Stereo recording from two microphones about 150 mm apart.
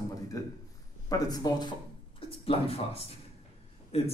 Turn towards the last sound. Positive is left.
turn(degrees=45)  # may be behind; listen again after turning